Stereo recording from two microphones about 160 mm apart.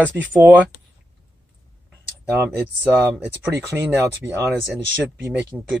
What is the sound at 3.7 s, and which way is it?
Speech, 10° right (ahead or behind).